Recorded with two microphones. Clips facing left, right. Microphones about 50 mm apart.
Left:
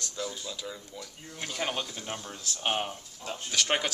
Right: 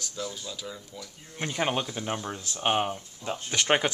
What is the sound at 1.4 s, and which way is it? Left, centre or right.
Speech, right.